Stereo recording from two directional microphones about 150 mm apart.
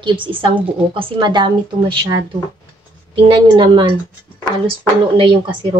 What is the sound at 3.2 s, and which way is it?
Speech, 30° right (ahead or behind).